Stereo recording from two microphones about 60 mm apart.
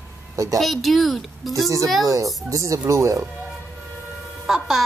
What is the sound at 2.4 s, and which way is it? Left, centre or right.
Speech, right.